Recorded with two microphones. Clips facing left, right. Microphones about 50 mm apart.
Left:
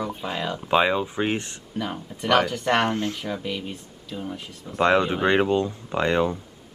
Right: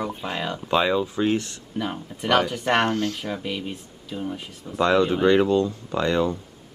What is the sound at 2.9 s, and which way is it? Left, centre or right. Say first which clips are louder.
Speech: right 1 dB; left.